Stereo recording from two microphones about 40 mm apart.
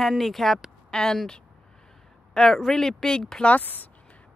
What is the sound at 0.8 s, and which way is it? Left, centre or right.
Speech, centre.